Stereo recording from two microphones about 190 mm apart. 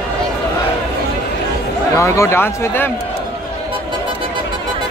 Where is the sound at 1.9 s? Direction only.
15° left (ahead or behind).